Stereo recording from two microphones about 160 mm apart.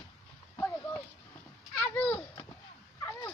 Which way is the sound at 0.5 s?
15° left (ahead or behind).